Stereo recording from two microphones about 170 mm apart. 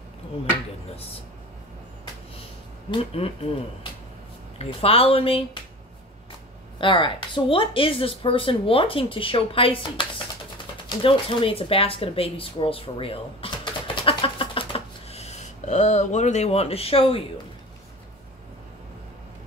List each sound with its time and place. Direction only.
2.9 s speech: 35° left (ahead or behind)
4.6 s speech: 35° left (ahead or behind)
6.8 s speech: 30° left (ahead or behind)
14.0 s a sound: 30° left (ahead or behind)